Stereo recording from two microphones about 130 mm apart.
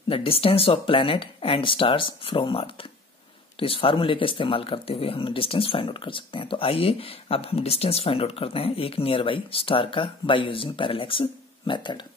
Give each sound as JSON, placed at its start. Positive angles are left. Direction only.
{"t": 0.1, "sound": "speech", "side_deg": 45}